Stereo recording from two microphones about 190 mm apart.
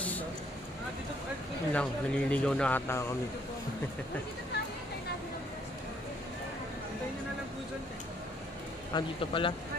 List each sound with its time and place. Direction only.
1.7 s speech: 5° left (ahead or behind)
8.9 s a man's voice: 25° left (ahead or behind)